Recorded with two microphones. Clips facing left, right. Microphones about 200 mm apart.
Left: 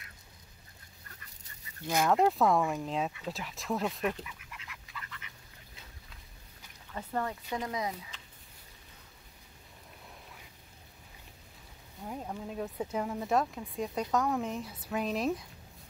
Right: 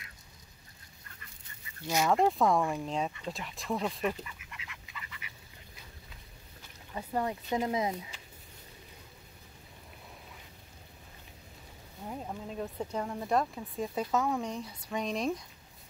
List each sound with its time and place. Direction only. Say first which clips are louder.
2.0 s speech: even; centre (ahead or behind)
4.6 s duck: even; 5° right (ahead or behind)
6.9 s speech: right 2 dB; 10° right (ahead or behind)
12.1 s speech: left 1 dB; centre (ahead or behind)